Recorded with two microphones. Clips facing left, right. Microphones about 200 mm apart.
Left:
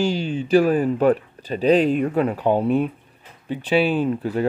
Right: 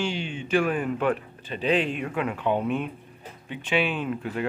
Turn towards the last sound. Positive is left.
turn(degrees=35)  # may be behind; listen again after turning